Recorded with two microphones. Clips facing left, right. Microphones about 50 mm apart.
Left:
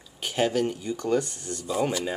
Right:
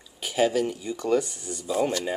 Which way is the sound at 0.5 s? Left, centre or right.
Left.